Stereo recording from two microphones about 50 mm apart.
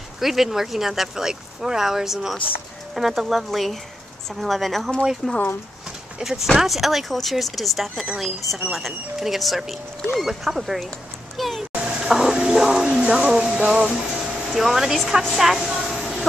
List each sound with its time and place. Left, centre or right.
0.2 s speech: centre
11.3 s vehicle: centre
11.7 s speech: centre
13.3 s music: right
14.5 s speech: centre
15.3 s a sound: centre